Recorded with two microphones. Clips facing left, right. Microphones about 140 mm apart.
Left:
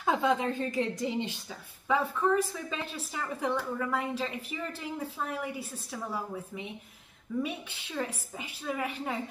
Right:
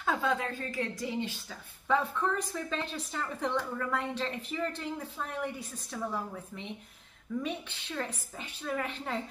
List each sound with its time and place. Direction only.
0.0 s a woman's voice: 20° left (ahead or behind)
1.9 s a woman's voice: 5° left (ahead or behind)
7.4 s a woman's voice: 10° left (ahead or behind)